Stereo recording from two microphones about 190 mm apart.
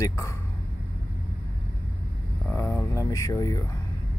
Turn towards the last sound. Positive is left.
turn(degrees=15)  # may be behind; listen again after turning